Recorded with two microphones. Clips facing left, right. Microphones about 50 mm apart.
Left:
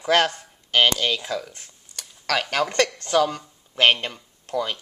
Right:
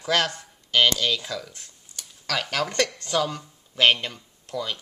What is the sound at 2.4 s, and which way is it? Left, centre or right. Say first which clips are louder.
Speech: left 3 dB; centre.